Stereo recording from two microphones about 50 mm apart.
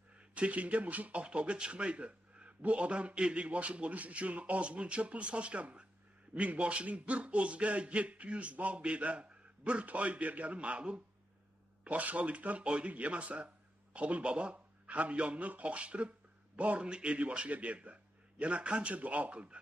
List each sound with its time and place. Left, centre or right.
0.3 s speech: right